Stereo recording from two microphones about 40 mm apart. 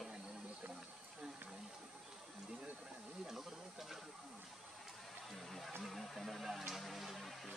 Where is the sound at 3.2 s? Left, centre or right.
Centre.